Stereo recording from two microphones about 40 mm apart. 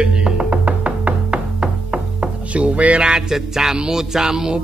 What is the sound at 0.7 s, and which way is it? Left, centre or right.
Music, right.